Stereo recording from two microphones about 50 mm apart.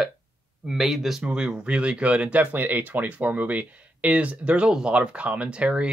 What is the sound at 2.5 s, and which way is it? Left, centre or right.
Speech, right.